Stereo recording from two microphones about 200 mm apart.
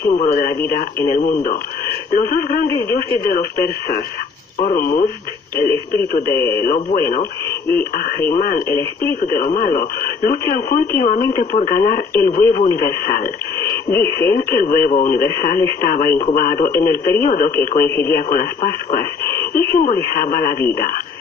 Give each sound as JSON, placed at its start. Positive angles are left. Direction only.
{"t": 0.1, "sound": "speech", "side_deg": 35}